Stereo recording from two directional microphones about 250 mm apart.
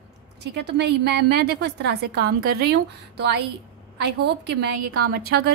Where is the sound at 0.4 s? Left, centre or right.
Right.